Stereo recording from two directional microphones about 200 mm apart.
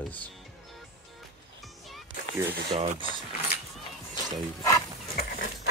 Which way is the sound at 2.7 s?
25° right (ahead or behind).